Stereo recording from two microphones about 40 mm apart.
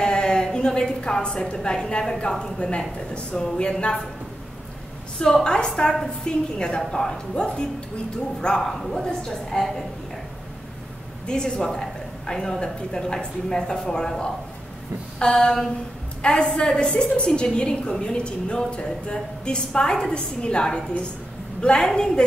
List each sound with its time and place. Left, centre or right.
0.0 s a woman's voice: centre
5.2 s a woman's voice: centre
11.2 s a woman's voice: centre